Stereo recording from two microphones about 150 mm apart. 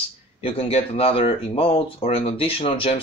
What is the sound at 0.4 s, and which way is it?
Speech, 40° left (ahead or behind).